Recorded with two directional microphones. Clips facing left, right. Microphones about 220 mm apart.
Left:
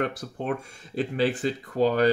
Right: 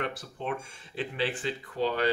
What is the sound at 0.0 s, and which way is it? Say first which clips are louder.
Speech: left 5 dB; 45° left (ahead or behind).